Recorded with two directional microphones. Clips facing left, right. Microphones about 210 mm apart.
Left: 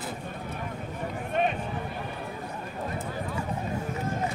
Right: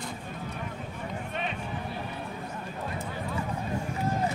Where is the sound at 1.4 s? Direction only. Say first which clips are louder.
Left 10 dB; 50° left (ahead or behind).